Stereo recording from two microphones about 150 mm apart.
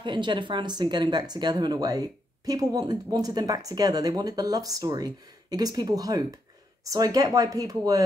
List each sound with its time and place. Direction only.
0.0 s speech: 30° right (ahead or behind)